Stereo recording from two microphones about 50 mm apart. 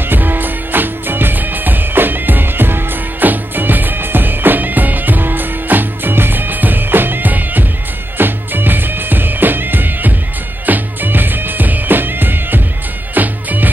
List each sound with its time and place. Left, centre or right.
0.1 s music: right